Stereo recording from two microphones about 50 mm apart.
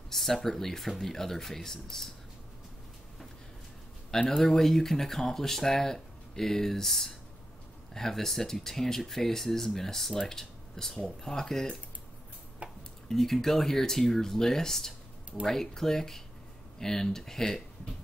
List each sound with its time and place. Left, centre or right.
0.1 s speech: centre
4.4 s speech: centre
12.6 s dishes: right
13.1 s speech: centre